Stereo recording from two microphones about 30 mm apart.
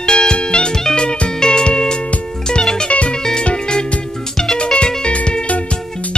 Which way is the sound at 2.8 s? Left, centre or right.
Left.